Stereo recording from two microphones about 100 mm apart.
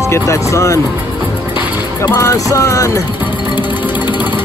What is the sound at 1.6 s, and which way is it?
Music, 45° left (ahead or behind).